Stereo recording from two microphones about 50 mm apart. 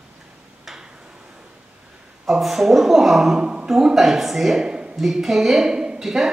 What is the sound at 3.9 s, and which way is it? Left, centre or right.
Speech, centre.